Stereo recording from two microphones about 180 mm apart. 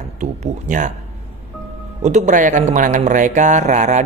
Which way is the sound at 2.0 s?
40° right (ahead or behind).